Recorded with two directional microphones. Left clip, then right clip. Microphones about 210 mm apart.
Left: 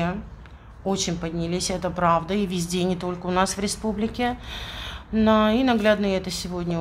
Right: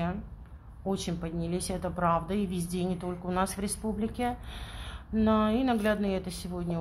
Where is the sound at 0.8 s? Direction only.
Centre (ahead or behind).